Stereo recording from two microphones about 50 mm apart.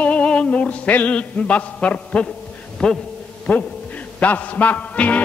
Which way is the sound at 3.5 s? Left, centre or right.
Left.